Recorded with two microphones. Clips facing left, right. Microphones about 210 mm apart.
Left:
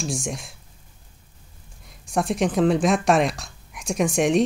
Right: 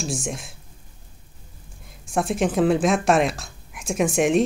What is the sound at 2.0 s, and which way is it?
Speech, centre (ahead or behind).